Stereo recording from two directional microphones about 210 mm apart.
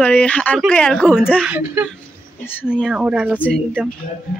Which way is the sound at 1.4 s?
10° right (ahead or behind).